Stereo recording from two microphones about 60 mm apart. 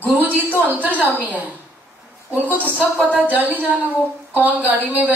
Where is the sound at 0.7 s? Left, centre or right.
Right.